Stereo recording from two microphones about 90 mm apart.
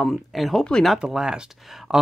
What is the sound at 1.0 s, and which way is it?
Speech, 10° right (ahead or behind).